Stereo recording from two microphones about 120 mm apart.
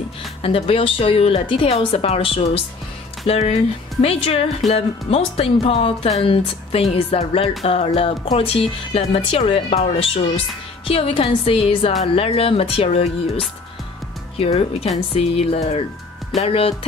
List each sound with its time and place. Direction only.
0.4 s speech: 50° left (ahead or behind)
14.4 s speech: 55° left (ahead or behind)